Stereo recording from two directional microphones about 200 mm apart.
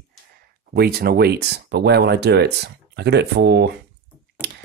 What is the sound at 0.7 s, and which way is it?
Speech, 50° right (ahead or behind).